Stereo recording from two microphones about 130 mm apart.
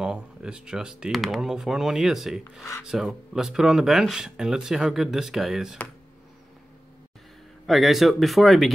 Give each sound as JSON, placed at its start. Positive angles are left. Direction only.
{"t": 0.0, "sound": "speech", "side_deg": -5}
{"t": 7.6, "sound": "speech", "side_deg": 0}